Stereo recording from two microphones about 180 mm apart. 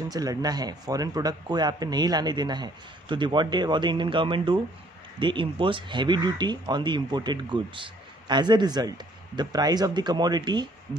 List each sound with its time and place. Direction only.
0.1 s speech: 20° right (ahead or behind)